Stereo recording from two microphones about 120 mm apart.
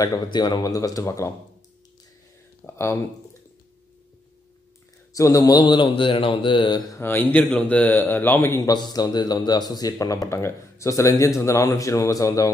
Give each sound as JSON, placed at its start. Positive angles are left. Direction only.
{"t": 0.0, "sound": "a man's voice", "side_deg": 35}
{"t": 2.6, "sound": "a sound", "side_deg": 25}
{"t": 5.1, "sound": "speech", "side_deg": 30}
{"t": 7.0, "sound": "a man's voice", "side_deg": 15}
{"t": 8.5, "sound": "a man's voice", "side_deg": 35}